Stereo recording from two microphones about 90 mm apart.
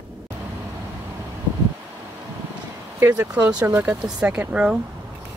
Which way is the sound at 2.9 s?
30° right (ahead or behind).